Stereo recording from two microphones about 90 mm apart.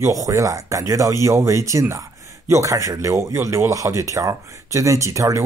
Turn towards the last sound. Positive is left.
turn(degrees=-35)  # may be behind; listen again after turning